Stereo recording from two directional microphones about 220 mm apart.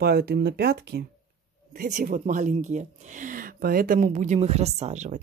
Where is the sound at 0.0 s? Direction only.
45° right (ahead or behind).